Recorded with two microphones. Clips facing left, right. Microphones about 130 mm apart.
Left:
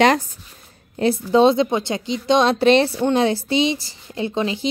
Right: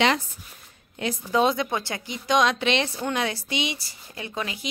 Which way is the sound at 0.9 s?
35° left (ahead or behind).